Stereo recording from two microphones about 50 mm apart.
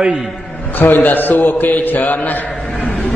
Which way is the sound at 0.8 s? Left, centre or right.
Left.